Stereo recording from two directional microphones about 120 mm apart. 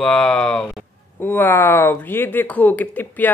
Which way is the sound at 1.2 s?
15° left (ahead or behind).